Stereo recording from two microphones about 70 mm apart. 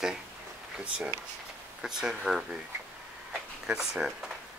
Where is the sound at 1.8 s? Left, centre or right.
Centre.